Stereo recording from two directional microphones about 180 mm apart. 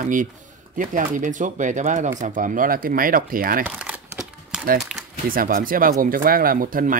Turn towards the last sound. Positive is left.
turn(degrees=-50)  # may be behind; listen again after turning